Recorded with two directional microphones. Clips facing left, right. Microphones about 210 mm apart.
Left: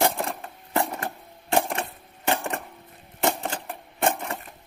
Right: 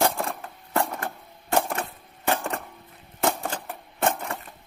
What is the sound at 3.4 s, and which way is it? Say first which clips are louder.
Typewriter: even; 20° left (ahead or behind).